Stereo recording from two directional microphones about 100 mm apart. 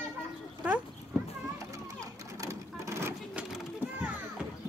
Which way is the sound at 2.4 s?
30° right (ahead or behind).